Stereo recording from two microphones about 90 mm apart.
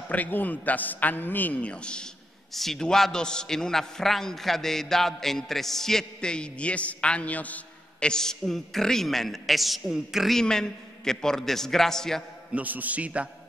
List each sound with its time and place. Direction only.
0.1 s a man's voice: 20° left (ahead or behind)
12.5 s a man's voice: 20° right (ahead or behind)